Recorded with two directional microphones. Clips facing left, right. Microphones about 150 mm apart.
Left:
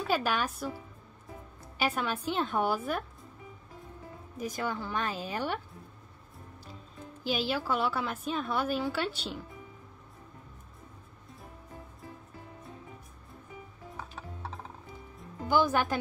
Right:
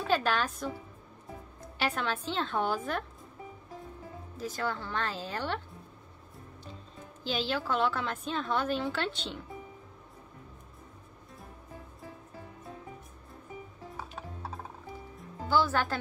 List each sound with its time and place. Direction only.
0.1 s a woman's voice: 10° left (ahead or behind)
1.8 s a woman's voice: 10° left (ahead or behind)
4.4 s a woman's voice: 15° left (ahead or behind)
7.2 s a woman's voice: 10° left (ahead or behind)
15.4 s a woman's voice: 15° left (ahead or behind)